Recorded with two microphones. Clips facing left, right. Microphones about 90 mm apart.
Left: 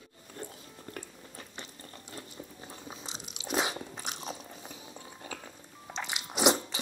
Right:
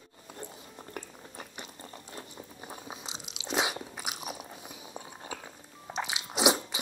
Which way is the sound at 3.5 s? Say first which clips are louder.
Right 1 dB; 10° right (ahead or behind).